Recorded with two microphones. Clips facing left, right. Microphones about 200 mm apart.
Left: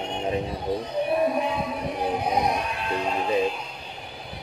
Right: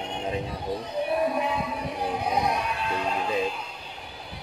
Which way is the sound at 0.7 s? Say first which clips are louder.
Left 4 dB; 20° left (ahead or behind).